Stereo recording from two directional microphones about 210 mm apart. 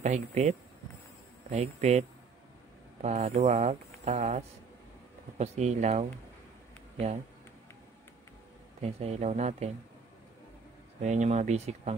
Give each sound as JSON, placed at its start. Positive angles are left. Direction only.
{"t": 0.0, "sound": "speech", "side_deg": -35}
{"t": 8.8, "sound": "speech", "side_deg": -30}
{"t": 11.0, "sound": "speech", "side_deg": -35}